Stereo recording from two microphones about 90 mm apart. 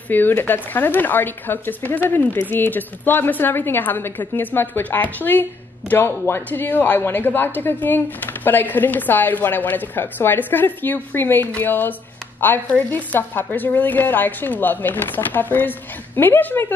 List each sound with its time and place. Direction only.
0.1 s a woman's voice: 20° left (ahead or behind)